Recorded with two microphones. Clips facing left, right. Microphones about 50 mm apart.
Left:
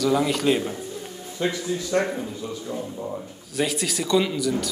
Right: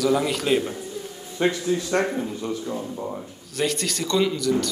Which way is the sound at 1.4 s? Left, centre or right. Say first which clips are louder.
Right 3 dB; right.